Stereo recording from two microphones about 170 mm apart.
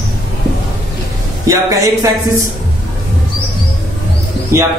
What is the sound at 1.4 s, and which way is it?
Speech, 20° right (ahead or behind).